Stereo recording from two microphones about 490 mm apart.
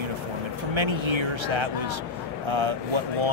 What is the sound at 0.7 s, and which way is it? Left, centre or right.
Speech, right.